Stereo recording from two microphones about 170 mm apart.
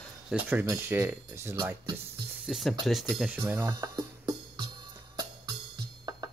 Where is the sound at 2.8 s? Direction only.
Centre (ahead or behind).